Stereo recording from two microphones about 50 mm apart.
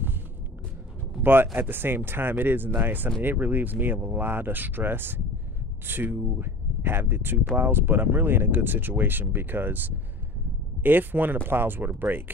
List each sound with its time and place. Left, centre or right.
1.2 s speech: right